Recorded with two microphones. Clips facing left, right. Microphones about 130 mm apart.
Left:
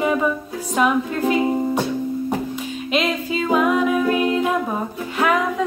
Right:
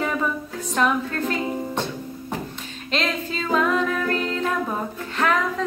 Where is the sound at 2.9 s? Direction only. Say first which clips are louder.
Left 4 dB; 10° left (ahead or behind).